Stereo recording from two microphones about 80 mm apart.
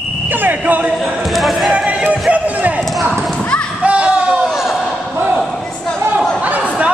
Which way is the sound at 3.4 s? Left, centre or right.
Centre.